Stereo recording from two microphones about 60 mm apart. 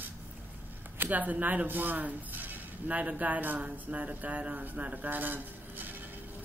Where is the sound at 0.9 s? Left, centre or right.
Right.